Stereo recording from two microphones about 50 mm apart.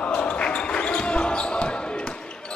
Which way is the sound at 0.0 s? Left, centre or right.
Left.